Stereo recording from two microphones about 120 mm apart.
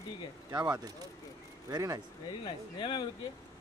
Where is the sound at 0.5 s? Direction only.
35° right (ahead or behind).